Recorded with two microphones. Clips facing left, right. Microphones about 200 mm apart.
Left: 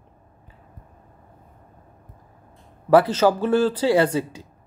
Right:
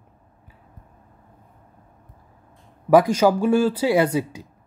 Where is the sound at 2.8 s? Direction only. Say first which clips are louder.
Right 1 dB; 10° right (ahead or behind).